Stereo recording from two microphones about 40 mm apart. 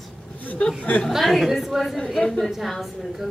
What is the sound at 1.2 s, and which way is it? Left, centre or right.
Speech, centre.